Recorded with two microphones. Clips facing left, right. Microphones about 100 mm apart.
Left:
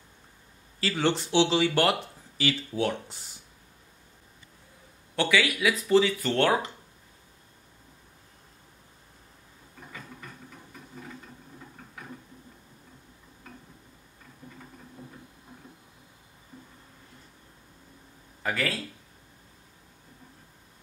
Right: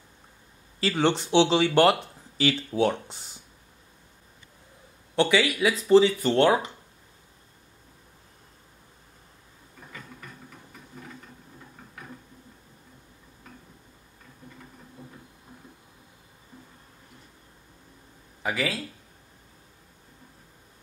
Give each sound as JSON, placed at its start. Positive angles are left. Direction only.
{"t": 0.7, "sound": "speech", "side_deg": -25}
{"t": 5.1, "sound": "speech", "side_deg": -25}
{"t": 18.4, "sound": "speech", "side_deg": -15}